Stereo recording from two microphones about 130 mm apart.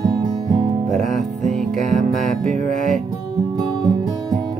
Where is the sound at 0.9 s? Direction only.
70° right (ahead or behind).